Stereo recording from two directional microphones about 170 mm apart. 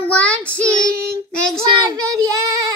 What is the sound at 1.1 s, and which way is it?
Child singing, 15° right (ahead or behind).